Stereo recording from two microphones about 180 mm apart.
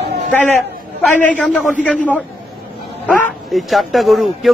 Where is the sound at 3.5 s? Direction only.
Centre (ahead or behind).